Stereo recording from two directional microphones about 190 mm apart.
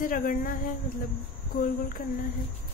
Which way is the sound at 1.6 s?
45° left (ahead or behind).